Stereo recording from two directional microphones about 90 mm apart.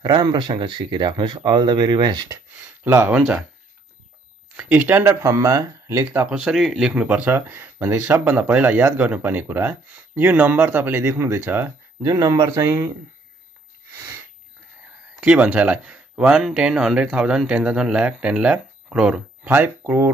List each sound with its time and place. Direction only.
0.0 s speech: 50° right (ahead or behind)
2.5 s speech: 20° right (ahead or behind)
4.6 s speech: 15° right (ahead or behind)
6.0 s speech: 10° right (ahead or behind)
6.9 s speech: 15° right (ahead or behind); by 12.7 s 40° right (ahead or behind)
15.1 s speech: 10° right (ahead or behind)
19.5 s speech: 25° right (ahead or behind)